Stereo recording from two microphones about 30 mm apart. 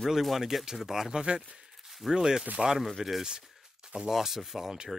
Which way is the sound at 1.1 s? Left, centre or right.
Right.